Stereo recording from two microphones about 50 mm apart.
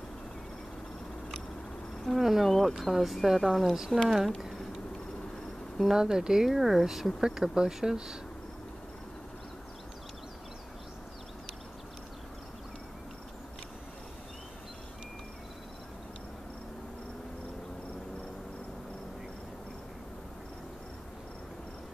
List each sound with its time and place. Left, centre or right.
2.0 s speech: centre
5.8 s speech: centre